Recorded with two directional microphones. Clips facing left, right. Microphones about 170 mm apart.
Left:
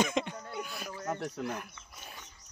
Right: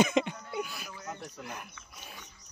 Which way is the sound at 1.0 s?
55° left (ahead or behind).